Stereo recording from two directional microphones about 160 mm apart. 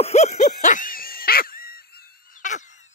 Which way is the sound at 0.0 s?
45° left (ahead or behind).